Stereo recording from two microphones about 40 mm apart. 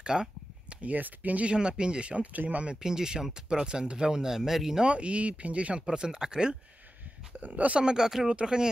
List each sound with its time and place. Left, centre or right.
0.0 s a sound: right
0.7 s speech: right
1.4 s speech: right
2.3 s speech: right
2.6 s speech: right
4.9 s speech: right
5.9 s speech: centre
7.3 s speech: right
7.8 s speech: centre
8.3 s speech: right